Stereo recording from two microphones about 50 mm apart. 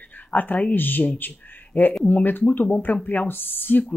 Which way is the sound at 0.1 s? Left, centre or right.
Left.